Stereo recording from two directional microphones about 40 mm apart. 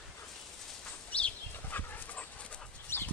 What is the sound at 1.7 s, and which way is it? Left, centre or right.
Dog, left.